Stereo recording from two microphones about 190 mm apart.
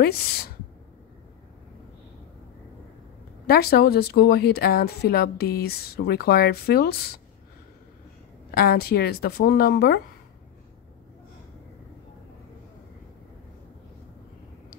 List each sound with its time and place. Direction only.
0.0 s speech: 55° left (ahead or behind)
3.4 s speech: 55° left (ahead or behind)
8.5 s speech: 55° left (ahead or behind)